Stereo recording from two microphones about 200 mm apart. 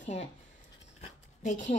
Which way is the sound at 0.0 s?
35° left (ahead or behind).